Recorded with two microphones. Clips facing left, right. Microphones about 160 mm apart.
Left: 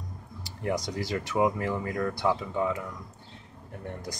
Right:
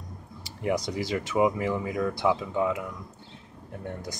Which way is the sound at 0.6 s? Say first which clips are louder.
Right 2 dB; 5° right (ahead or behind).